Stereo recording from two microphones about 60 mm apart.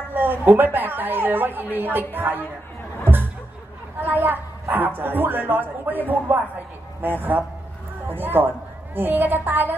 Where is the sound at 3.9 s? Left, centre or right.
Right.